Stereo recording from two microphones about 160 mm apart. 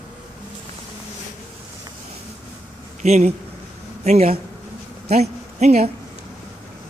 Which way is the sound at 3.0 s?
45° right (ahead or behind).